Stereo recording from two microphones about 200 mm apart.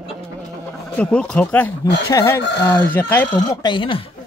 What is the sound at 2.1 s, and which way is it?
Speech, 20° left (ahead or behind).